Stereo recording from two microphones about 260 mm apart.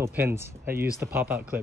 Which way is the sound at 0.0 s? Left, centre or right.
Centre.